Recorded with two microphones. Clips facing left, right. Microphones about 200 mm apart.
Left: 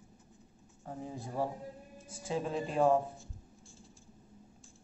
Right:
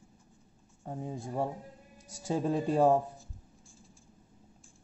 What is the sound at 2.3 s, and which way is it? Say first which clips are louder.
Speech: right 5 dB; 40° right (ahead or behind).